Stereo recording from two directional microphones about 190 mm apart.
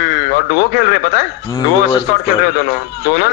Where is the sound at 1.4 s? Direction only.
20° left (ahead or behind).